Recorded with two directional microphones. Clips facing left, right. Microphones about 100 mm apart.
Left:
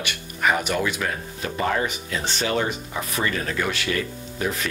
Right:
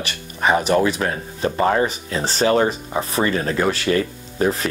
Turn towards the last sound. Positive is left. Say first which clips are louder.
# right 6 dB
turn(degrees=-35)  # may be behind; listen again after turning